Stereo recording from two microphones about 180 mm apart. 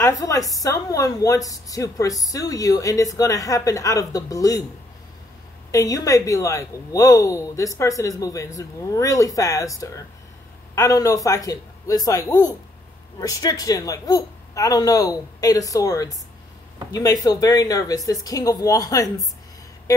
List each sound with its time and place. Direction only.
0.0 s a woman's voice: 20° left (ahead or behind)
5.7 s a woman's voice: 20° left (ahead or behind)